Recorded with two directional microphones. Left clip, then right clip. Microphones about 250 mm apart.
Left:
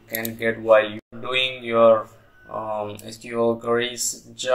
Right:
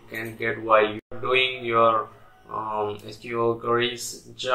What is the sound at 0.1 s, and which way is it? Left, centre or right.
Speech, left.